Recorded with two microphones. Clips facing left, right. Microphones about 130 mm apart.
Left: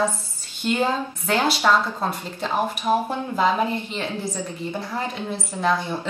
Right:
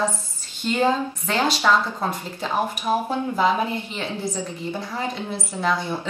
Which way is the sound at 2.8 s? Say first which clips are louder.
Even; 10° left (ahead or behind).